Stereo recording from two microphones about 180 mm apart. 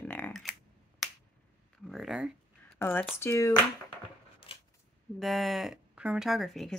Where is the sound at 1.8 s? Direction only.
Centre (ahead or behind).